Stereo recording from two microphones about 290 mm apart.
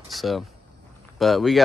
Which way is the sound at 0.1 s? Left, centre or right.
Centre.